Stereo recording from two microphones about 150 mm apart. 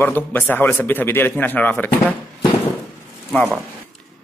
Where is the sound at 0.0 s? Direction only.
10° left (ahead or behind).